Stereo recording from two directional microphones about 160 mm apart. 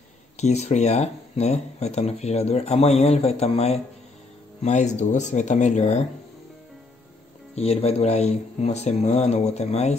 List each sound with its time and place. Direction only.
0.4 s speech: 45° left (ahead or behind)
7.5 s speech: 40° left (ahead or behind)